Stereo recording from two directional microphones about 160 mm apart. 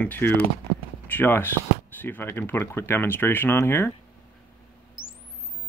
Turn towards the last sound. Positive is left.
turn(degrees=15)  # may be behind; listen again after turning